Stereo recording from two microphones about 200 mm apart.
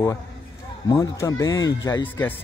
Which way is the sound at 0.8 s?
15° left (ahead or behind).